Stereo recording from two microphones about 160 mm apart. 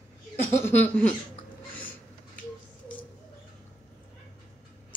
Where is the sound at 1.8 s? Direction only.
10° left (ahead or behind).